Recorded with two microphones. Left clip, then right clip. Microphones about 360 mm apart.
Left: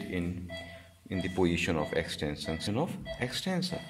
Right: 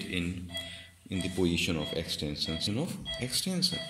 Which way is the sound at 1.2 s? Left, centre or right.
Left.